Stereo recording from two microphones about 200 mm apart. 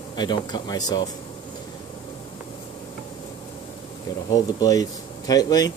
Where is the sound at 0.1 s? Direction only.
20° left (ahead or behind).